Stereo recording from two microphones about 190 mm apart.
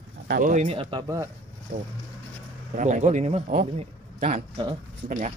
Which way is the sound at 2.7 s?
40° right (ahead or behind).